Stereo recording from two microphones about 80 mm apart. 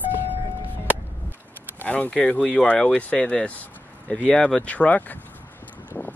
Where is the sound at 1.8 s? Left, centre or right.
Centre.